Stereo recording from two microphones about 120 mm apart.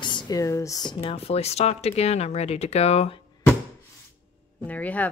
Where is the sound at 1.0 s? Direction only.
55° left (ahead or behind).